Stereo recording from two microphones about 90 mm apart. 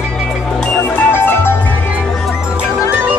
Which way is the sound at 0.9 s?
25° left (ahead or behind).